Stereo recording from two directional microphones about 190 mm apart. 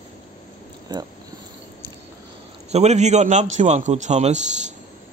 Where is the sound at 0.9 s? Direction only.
20° right (ahead or behind).